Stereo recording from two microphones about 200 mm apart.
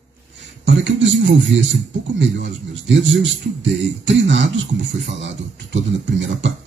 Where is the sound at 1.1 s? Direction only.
65° right (ahead or behind).